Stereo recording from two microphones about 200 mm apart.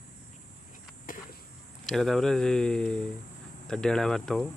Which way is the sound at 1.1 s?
45° left (ahead or behind).